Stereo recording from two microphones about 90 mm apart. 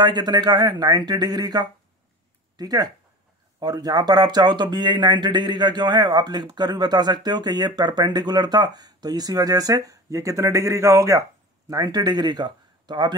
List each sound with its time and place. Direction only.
0.0 s speech: 50° right (ahead or behind); by 11.2 s 35° right (ahead or behind)
11.7 s speech: 50° right (ahead or behind)